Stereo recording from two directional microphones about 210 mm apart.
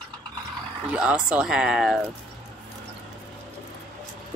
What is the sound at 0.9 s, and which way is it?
Speech, 5° right (ahead or behind).